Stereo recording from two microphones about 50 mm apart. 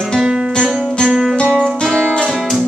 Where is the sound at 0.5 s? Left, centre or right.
Centre.